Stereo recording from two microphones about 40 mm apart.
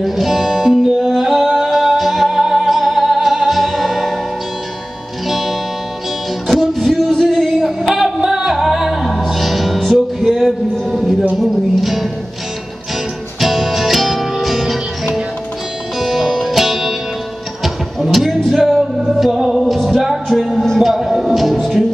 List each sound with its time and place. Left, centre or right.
0.0 s music: centre
5.3 s music: centre
7.2 s a sound: centre
7.8 s music: centre
8.5 s music: centre
10.9 s a sound: centre
11.3 s music: centre
13.4 s music: centre
17.9 s a sound: centre
18.5 s music: centre
19.6 s music: centre